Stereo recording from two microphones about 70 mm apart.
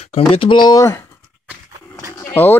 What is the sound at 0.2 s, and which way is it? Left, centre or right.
Speech, left.